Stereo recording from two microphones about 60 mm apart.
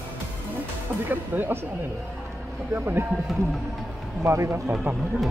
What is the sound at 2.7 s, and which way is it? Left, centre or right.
Speech, right.